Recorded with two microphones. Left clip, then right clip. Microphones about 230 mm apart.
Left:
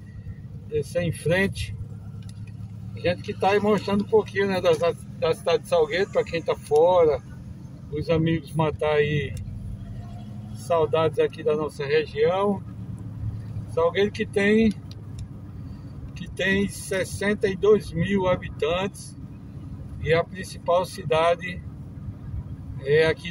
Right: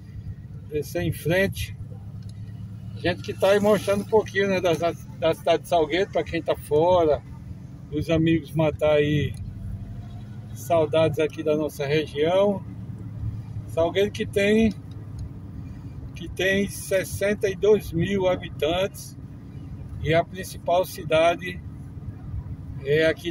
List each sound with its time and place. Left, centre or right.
0.7 s speech: centre
3.1 s speech: right
10.7 s speech: right
13.7 s speech: centre
16.3 s speech: centre
20.0 s speech: centre
22.8 s speech: centre